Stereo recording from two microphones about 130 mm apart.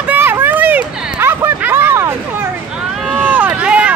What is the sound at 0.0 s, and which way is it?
Hubbub, 15° right (ahead or behind).